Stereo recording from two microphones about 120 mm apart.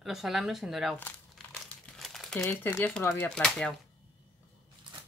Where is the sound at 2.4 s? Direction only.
20° left (ahead or behind).